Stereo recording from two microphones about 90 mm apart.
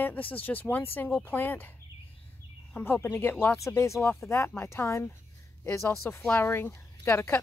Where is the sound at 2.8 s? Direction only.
25° left (ahead or behind).